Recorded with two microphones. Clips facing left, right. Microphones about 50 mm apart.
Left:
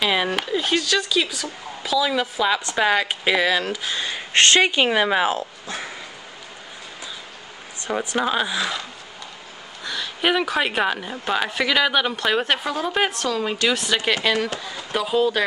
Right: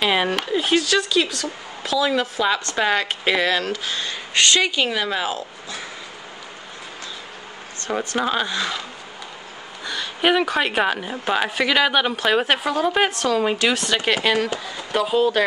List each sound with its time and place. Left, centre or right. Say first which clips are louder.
0.0 s a sound: right 1 dB; centre
0.5 s a woman's voice: right 2 dB; centre
4.3 s speech: left 2 dB; left
8.2 s a woman's voice: left 1 dB; centre
9.8 s a woman's voice: right 2 dB; centre